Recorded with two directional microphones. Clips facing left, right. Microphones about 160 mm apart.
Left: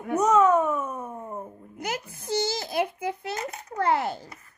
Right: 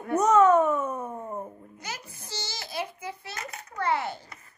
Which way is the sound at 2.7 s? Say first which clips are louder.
Left 7 dB; 55° left (ahead or behind).